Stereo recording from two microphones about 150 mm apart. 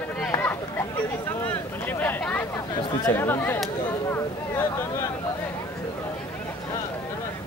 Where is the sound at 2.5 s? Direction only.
30° left (ahead or behind).